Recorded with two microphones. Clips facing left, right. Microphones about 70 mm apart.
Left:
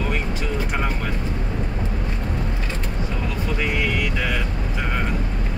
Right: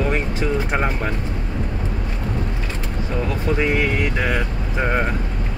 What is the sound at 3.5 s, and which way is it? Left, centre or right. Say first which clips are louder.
Speech: right 5 dB; right.